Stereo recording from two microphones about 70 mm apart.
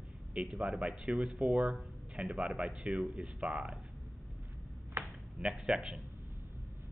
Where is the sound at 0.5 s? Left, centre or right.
Centre.